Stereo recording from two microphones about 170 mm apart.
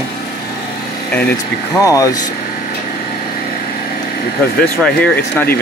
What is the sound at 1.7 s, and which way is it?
Speech, 20° left (ahead or behind).